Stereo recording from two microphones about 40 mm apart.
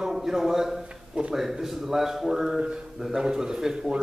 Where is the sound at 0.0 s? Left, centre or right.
Centre.